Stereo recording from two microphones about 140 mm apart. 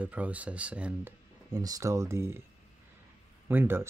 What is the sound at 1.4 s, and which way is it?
Speech, 25° right (ahead or behind).